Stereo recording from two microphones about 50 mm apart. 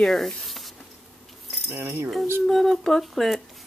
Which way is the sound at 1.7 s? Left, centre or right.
Right.